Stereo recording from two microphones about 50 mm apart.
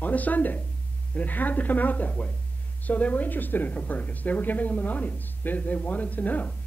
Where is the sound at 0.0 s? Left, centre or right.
Left.